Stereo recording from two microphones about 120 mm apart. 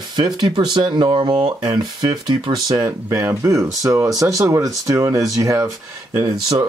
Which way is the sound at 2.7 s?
25° right (ahead or behind).